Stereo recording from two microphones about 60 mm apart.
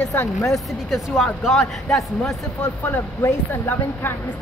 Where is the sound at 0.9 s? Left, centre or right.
Centre.